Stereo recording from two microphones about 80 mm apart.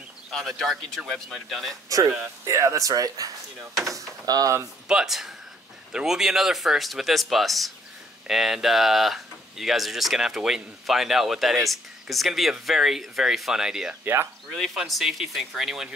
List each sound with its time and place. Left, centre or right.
0.3 s speech: centre
1.9 s speech: right
4.8 s speech: centre
14.5 s speech: centre